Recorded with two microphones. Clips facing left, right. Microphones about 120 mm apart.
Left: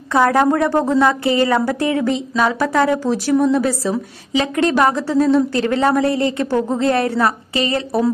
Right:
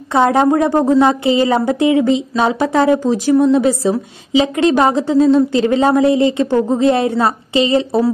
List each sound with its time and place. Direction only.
0.1 s a woman's voice: 20° right (ahead or behind)